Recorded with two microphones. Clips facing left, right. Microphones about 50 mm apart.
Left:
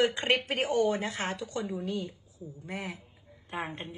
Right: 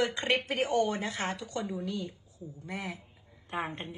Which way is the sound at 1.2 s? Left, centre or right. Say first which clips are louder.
Left 1 dB; right.